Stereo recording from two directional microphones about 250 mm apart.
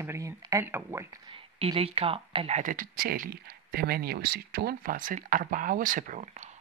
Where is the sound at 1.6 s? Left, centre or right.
Right.